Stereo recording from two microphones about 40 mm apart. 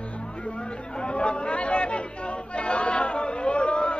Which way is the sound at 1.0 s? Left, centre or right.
Left.